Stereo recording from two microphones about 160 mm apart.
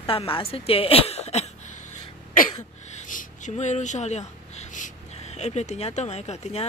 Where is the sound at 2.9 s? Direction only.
50° left (ahead or behind).